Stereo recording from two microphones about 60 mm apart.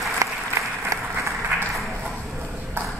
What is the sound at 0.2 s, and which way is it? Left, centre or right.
Applause, right.